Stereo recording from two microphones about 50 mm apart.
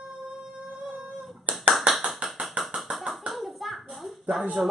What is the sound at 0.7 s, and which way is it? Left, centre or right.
Guitar, centre.